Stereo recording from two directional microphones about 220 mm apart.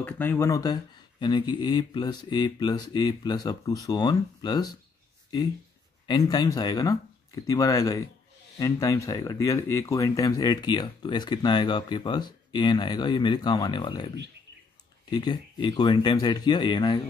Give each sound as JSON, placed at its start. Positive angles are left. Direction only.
{"t": 0.0, "sound": "speech", "side_deg": 10}